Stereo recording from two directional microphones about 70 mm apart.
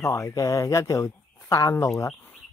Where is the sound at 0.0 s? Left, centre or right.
Left.